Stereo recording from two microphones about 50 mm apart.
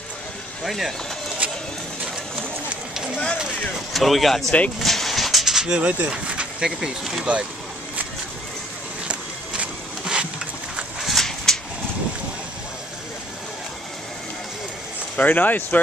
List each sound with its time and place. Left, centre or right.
0.7 s speech: centre
1.4 s vehicle: right
3.9 s speech: centre
4.8 s vehicle: centre
5.7 s speech: right
9.0 s a sound: right
11.0 s a sound: centre
15.1 s speech: left